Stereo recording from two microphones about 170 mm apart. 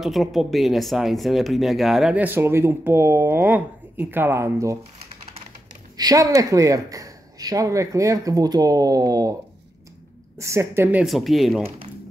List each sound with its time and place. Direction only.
0.0 s speech: centre (ahead or behind); by 4.7 s 15° right (ahead or behind)
5.9 s speech: 20° right (ahead or behind)
10.3 s speech: 15° right (ahead or behind); by 11.6 s centre (ahead or behind)